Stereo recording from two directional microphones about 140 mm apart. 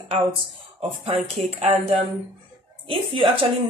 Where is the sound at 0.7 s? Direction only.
45° right (ahead or behind).